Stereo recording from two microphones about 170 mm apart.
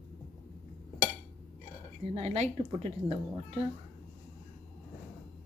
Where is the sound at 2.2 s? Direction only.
40° right (ahead or behind).